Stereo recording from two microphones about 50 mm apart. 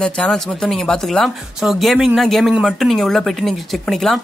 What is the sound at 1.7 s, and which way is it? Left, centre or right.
Speech, centre.